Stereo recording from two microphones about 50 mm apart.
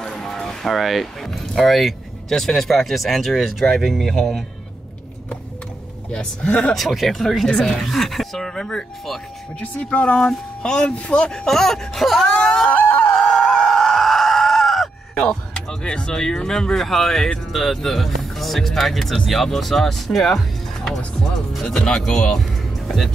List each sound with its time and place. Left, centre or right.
0.0 s speech: centre
6.4 s speech: left
6.7 s speech: centre
9.6 s speech: left; by 12.3 s centre
12.3 s screaming: centre
12.7 s a sound: left
13.1 s screaming: centre
15.1 s speech: centre